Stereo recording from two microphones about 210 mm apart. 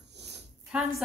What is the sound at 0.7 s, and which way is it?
Speech, centre (ahead or behind).